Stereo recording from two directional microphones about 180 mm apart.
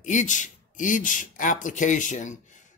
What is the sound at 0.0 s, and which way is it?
A man's voice, 45° left (ahead or behind).